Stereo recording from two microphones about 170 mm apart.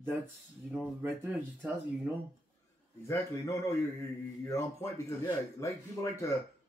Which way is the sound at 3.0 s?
20° left (ahead or behind).